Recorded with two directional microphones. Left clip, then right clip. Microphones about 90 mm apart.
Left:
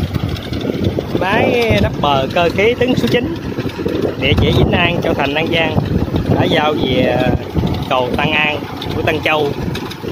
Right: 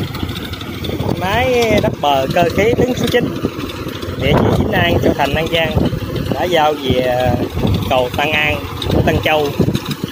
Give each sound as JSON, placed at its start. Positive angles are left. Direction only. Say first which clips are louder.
{"t": 1.2, "sound": "speech", "louder": "even", "side_deg": 20}
{"t": 6.4, "sound": "speech", "louder": "right 2 dB", "side_deg": 40}